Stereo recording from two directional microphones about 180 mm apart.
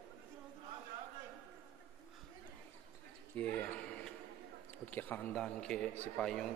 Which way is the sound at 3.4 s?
10° left (ahead or behind).